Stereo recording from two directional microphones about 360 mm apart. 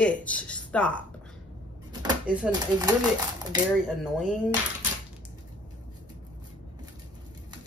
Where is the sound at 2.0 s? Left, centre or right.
Centre.